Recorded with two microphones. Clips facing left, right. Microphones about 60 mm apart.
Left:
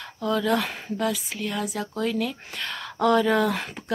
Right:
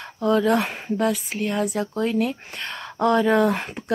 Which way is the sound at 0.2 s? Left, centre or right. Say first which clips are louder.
Right 4 dB; right.